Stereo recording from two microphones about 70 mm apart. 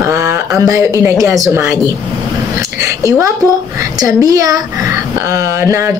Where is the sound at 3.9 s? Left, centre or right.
Right.